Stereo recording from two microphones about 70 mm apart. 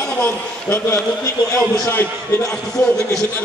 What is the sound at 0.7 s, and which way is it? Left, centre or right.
Speech, left.